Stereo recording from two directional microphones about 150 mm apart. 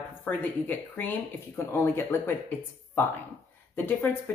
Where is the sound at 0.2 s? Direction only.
10° left (ahead or behind).